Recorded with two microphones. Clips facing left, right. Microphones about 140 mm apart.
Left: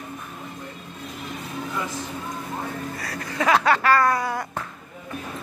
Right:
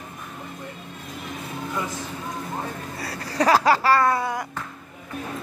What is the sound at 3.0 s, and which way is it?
Laughter, 30° right (ahead or behind).